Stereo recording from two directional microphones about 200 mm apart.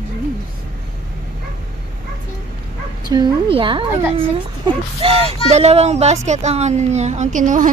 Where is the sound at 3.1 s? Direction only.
25° right (ahead or behind).